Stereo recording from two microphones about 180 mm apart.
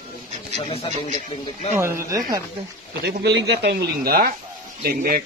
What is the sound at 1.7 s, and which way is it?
Speech, 15° right (ahead or behind).